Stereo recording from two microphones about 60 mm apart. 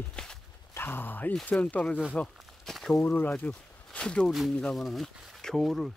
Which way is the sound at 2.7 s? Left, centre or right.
Centre.